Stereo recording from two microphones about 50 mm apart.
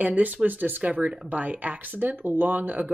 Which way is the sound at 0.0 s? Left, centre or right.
Right.